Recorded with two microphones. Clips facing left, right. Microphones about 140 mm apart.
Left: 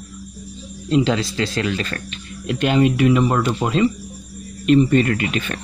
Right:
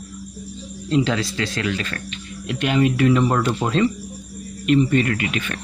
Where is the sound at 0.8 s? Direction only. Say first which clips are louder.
Left 2 dB; 20° left (ahead or behind).